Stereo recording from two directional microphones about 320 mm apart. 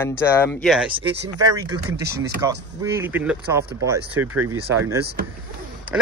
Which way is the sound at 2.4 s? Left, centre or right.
Centre.